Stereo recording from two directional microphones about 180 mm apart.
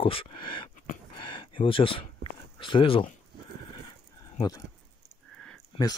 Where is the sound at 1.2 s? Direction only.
25° left (ahead or behind).